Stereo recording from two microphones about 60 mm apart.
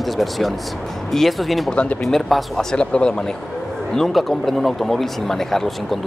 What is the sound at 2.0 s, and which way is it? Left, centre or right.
Speech, centre.